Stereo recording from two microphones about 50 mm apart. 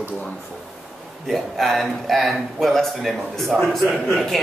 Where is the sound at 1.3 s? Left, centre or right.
Centre.